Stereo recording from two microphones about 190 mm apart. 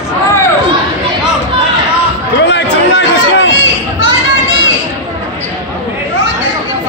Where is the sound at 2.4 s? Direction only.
70° left (ahead or behind).